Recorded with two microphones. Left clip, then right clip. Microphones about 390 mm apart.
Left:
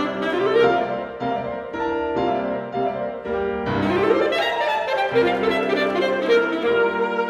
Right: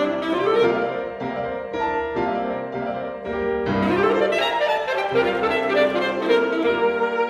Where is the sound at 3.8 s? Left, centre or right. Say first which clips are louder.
Left 1 dB; centre.